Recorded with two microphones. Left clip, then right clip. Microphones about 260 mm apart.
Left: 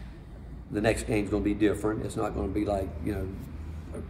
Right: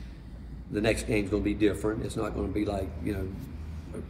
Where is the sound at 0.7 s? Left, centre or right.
Centre.